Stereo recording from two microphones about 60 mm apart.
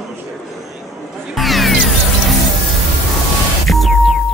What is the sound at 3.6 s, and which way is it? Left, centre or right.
Music, centre.